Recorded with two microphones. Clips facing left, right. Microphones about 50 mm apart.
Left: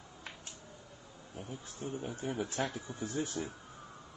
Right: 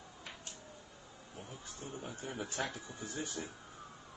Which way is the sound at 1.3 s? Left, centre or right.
Centre.